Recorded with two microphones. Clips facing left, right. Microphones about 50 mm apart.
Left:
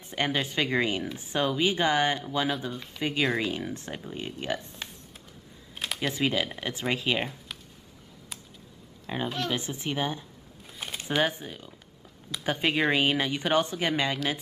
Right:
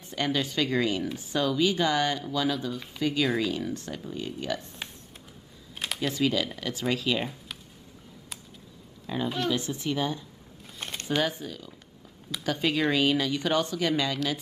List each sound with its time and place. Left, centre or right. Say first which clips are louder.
0.1 s speech: even; left
5.8 s computer keyboard: even; centre
6.1 s speech: right 2 dB; left
9.0 s speech: right 2 dB; left
10.8 s a sound: even; centre
11.2 s speech: left 1 dB; left